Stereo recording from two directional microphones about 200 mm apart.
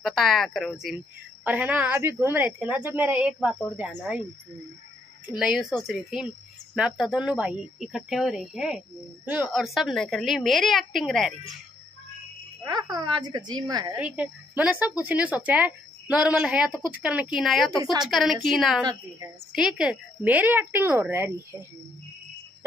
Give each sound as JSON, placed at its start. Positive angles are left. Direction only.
{"t": 0.0, "sound": "a woman's voice", "side_deg": 0}
{"t": 5.4, "sound": "speech", "side_deg": 0}
{"t": 12.6, "sound": "a woman's voice", "side_deg": -20}
{"t": 13.9, "sound": "a woman's voice", "side_deg": -5}